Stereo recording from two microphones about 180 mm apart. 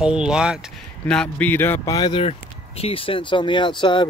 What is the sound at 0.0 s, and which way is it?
Speech, 5° right (ahead or behind).